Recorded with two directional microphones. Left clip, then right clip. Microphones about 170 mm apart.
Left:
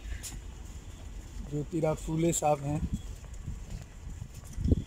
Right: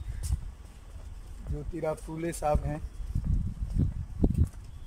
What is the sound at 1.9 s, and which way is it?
Speech, 20° left (ahead or behind).